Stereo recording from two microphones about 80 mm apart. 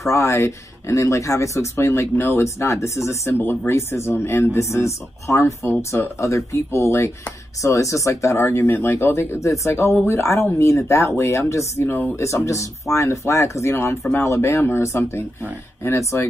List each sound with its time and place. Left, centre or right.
0.0 s speech: left
11.9 s speech: left
12.2 s speech: left